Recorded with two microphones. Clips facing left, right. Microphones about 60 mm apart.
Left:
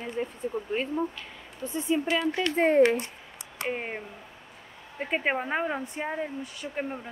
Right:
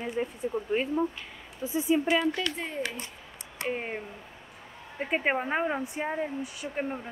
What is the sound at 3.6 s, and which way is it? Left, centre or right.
Speech, centre.